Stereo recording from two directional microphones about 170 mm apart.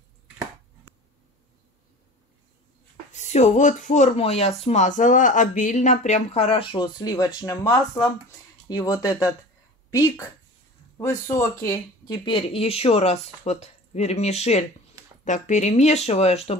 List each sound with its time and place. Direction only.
3.1 s speech: 45° left (ahead or behind)